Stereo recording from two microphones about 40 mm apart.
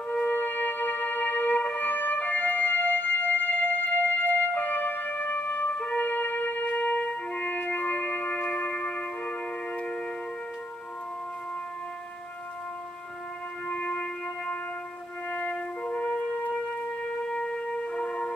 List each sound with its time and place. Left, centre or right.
0.1 s music: left
13.8 s music: left
15.9 s wind instrument: left